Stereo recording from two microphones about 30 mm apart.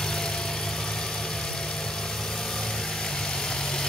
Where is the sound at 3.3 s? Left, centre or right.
Left.